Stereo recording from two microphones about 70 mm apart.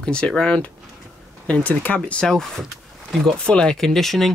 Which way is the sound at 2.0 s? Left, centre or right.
Centre.